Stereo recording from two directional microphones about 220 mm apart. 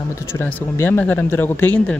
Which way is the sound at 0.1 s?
10° left (ahead or behind).